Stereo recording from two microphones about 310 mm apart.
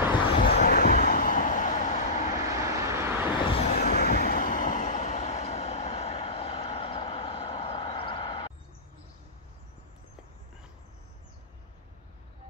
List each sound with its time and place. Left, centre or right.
0.3 s vehicle: left
2.4 s vehicle: centre
3.3 s vehicle: centre
3.7 s vehicle: left